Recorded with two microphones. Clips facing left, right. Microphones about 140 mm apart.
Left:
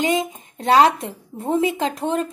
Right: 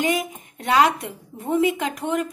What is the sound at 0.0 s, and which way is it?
A woman's voice, 25° left (ahead or behind).